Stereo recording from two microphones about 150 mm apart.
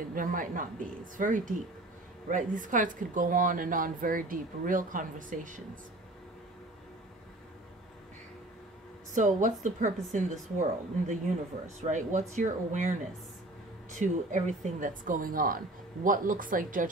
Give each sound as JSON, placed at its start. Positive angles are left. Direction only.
{"t": 0.0, "sound": "speech", "side_deg": -70}
{"t": 9.1, "sound": "speech", "side_deg": -55}
{"t": 13.9, "sound": "speech", "side_deg": -55}